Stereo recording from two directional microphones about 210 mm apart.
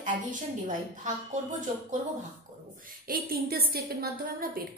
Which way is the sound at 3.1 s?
45° right (ahead or behind).